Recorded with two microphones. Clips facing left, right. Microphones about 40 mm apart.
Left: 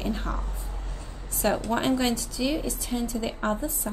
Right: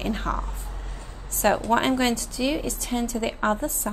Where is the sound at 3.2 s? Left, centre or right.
Right.